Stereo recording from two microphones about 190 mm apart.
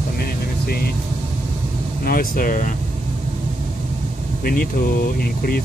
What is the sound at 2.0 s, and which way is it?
Speech, 50° left (ahead or behind).